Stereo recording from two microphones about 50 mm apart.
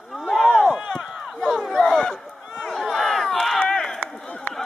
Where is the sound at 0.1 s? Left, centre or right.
Centre.